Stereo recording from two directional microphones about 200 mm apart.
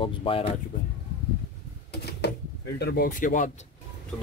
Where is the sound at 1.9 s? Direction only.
55° left (ahead or behind).